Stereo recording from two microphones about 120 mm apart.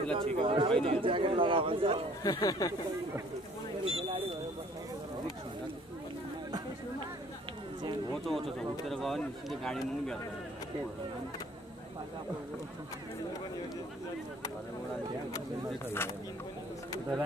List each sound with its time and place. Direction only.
0.0 s speech: 50° right (ahead or behind)
2.2 s speech: 30° left (ahead or behind)
3.8 s speech: 50° right (ahead or behind)
8.5 s speech: 5° left (ahead or behind)